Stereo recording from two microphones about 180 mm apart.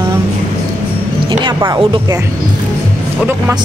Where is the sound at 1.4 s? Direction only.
25° right (ahead or behind).